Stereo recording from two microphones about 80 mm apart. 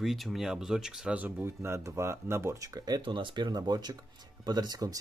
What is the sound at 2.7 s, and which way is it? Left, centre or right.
Speech, right.